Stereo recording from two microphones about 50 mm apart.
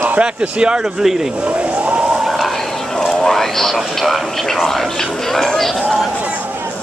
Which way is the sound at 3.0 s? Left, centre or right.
Centre.